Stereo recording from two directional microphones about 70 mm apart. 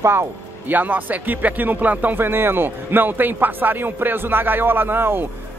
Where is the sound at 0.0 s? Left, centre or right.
Right.